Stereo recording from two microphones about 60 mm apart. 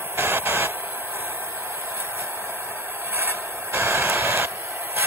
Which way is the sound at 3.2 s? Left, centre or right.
Right.